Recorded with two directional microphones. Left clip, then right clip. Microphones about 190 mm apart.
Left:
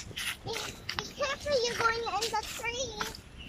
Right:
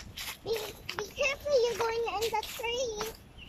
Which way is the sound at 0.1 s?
20° right (ahead or behind).